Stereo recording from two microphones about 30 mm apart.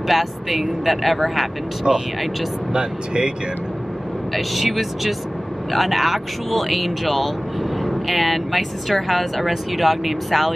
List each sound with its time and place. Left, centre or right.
0.1 s speech: centre
1.8 s speech: centre
2.7 s speech: right
4.3 s speech: centre